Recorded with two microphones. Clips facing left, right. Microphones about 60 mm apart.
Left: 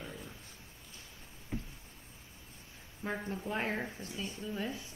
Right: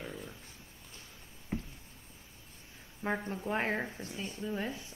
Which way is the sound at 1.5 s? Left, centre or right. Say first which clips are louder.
Right 3 dB; right.